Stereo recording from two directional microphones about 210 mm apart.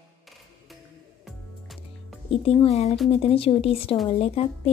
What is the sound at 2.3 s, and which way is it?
Speech, 25° left (ahead or behind).